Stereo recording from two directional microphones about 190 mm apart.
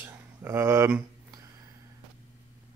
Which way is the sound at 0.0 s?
10° right (ahead or behind).